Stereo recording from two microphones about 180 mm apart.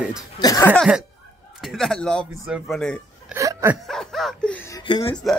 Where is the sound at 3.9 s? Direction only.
Centre (ahead or behind).